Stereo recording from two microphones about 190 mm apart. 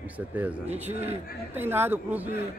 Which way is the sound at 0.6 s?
35° right (ahead or behind).